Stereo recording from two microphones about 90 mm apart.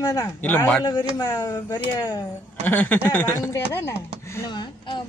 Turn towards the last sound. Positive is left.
turn(degrees=30)  # may be behind; listen again after turning